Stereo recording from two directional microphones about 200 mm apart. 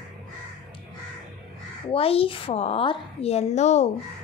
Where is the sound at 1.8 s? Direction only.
30° left (ahead or behind).